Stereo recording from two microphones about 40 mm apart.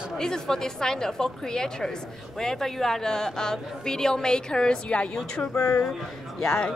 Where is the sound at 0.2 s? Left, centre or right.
Centre.